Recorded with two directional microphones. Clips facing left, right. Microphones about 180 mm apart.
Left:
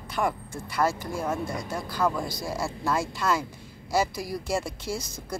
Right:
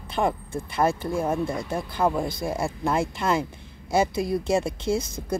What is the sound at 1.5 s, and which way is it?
Speech, 55° right (ahead or behind).